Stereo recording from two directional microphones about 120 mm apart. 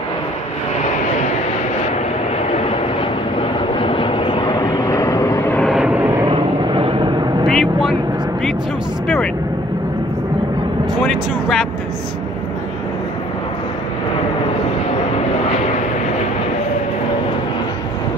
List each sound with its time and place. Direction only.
3.7 s vehicle: 45° left (ahead or behind); by 5.6 s 25° left (ahead or behind)
5.8 s vehicle: 10° right (ahead or behind)
6.2 s vehicle: 45° right (ahead or behind)
7.4 s vehicle: centre (ahead or behind)
9.0 s vehicle: centre (ahead or behind)
11.0 s vehicle: centre (ahead or behind)